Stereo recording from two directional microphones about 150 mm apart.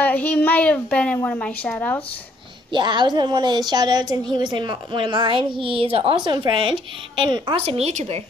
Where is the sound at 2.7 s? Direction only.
30° right (ahead or behind).